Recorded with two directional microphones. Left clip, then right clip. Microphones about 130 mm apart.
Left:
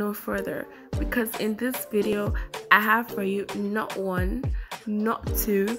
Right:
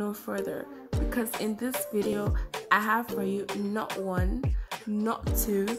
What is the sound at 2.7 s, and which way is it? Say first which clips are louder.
Speech: left 5 dB; 35° left (ahead or behind).